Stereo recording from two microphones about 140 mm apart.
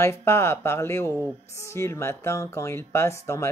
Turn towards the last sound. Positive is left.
turn(degrees=20)  # may be behind; listen again after turning